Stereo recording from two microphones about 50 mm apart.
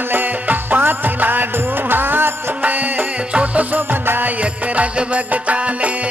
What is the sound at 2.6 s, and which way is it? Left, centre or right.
Music, right.